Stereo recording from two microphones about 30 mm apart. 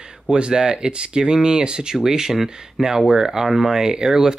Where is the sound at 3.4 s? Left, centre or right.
Centre.